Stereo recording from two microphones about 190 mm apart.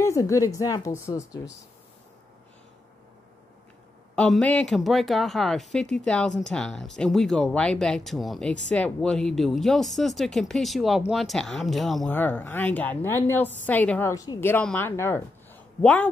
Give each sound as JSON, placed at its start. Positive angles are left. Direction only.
{"t": 0.0, "sound": "speech", "side_deg": 15}
{"t": 4.1, "sound": "speech", "side_deg": 5}